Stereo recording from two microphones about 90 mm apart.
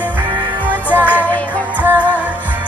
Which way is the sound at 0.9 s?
20° right (ahead or behind).